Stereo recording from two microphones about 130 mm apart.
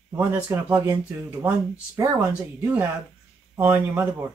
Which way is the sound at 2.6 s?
10° right (ahead or behind).